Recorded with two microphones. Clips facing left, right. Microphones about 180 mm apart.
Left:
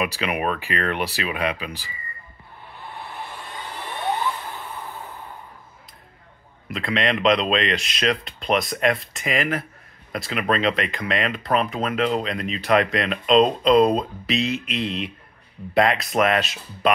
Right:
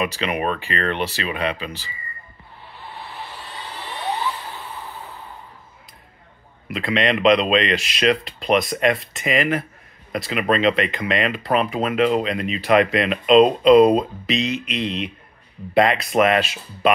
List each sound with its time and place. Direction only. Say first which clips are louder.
0.0 s speech: right 1 dB; 5° left (ahead or behind)
2.9 s a sound: even; 50° left (ahead or behind)
6.7 s speech: right 3 dB; centre (ahead or behind)